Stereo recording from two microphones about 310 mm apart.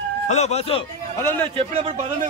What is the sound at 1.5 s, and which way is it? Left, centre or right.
Speech, centre.